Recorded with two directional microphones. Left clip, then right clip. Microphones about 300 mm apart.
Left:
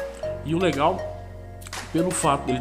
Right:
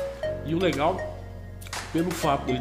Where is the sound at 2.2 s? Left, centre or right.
Centre.